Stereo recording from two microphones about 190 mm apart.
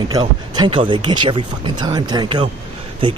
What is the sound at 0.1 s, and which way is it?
Speech, 25° right (ahead or behind).